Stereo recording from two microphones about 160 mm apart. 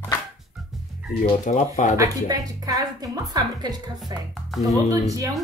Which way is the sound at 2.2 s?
25° right (ahead or behind).